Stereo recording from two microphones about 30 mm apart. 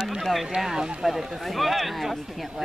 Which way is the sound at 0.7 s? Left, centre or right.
Right.